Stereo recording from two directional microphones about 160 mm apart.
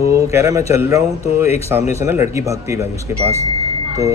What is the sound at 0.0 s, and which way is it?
Speech, 20° right (ahead or behind).